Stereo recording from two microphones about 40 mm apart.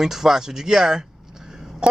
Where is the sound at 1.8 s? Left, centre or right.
Centre.